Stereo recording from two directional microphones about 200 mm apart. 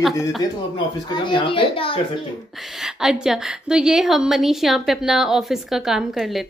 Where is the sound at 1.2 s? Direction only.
25° left (ahead or behind).